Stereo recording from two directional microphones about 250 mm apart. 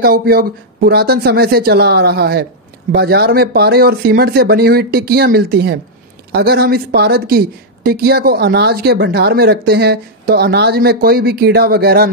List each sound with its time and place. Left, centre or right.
0.0 s speech: right